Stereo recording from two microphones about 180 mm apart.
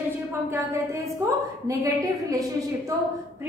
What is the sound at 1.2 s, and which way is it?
A woman's voice, 15° right (ahead or behind).